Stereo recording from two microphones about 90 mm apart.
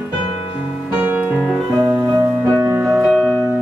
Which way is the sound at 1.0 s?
20° right (ahead or behind).